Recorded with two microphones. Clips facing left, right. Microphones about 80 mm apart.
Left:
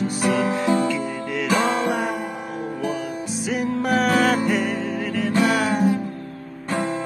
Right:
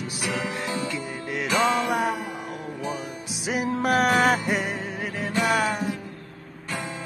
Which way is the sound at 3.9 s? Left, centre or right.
Centre.